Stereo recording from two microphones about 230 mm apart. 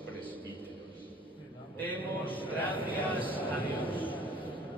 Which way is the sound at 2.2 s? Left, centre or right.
Left.